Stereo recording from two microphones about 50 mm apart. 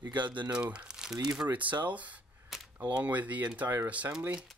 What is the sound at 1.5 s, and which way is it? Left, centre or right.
Speech, right.